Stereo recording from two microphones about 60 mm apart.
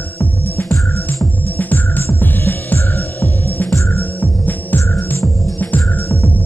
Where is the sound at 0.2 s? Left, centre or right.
Left.